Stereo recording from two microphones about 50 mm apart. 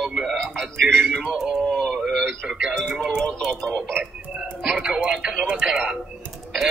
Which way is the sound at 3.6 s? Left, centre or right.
Centre.